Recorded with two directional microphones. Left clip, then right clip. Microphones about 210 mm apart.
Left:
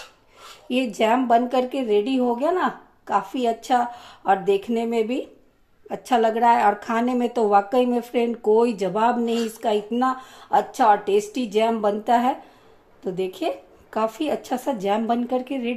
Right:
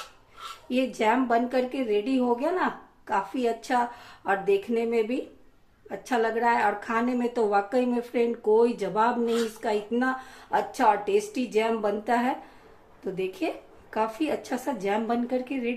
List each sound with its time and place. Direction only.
0.7 s speech: 30° left (ahead or behind)